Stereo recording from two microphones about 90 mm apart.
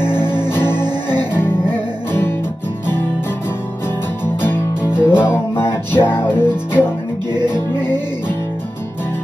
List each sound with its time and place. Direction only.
0.4 s music: 25° left (ahead or behind)
5.0 s music: 25° left (ahead or behind)
7.5 s music: 50° right (ahead or behind)